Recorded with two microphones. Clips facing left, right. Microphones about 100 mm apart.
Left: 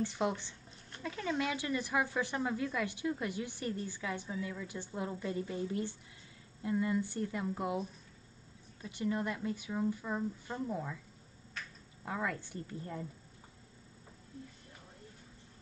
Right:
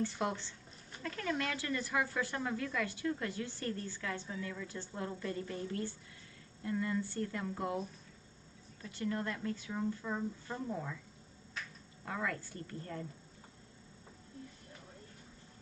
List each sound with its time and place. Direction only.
0.0 s a woman's voice: 20° left (ahead or behind)
8.8 s a woman's voice: 15° left (ahead or behind)
12.0 s a woman's voice: 20° left (ahead or behind)